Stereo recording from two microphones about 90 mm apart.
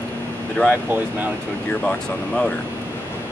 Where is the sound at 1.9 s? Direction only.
10° left (ahead or behind).